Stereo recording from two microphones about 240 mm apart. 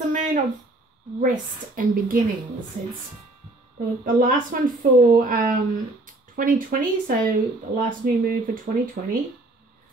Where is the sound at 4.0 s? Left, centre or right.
Right.